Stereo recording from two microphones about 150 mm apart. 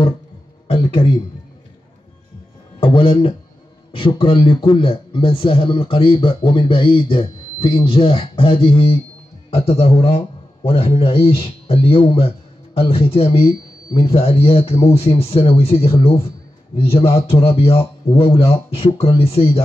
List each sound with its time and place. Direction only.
0.7 s a man's voice: 35° left (ahead or behind)
2.8 s a man's voice: 35° left (ahead or behind)